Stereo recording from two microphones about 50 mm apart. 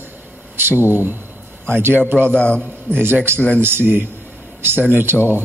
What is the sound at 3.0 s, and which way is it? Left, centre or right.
Speech, right.